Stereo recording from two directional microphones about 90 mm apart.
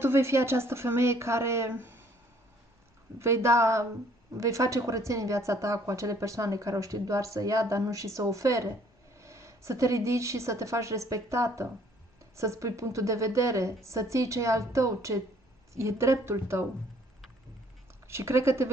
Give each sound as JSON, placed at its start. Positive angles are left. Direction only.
{"t": 0.0, "sound": "speech", "side_deg": -30}
{"t": 3.2, "sound": "speech", "side_deg": -30}
{"t": 18.0, "sound": "speech", "side_deg": -30}